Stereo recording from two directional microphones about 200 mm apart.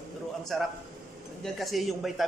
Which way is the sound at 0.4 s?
Centre (ahead or behind).